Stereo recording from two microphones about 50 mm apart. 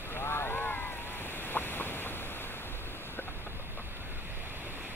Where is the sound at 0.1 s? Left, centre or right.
Left.